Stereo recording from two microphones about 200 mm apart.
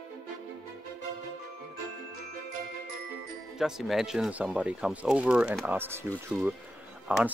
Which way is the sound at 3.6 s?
Centre (ahead or behind).